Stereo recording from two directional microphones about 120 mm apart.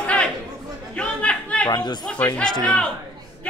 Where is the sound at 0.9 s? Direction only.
10° left (ahead or behind).